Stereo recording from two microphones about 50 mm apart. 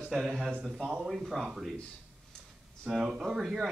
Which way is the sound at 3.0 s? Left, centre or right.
Centre.